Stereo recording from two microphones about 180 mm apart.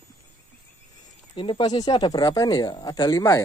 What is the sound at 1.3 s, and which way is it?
Speech, 30° left (ahead or behind).